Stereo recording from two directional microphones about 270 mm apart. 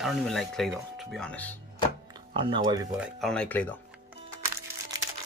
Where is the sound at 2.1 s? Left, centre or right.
Centre.